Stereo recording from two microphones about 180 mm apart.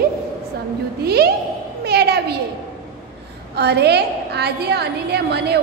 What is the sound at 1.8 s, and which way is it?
Speech, 65° right (ahead or behind).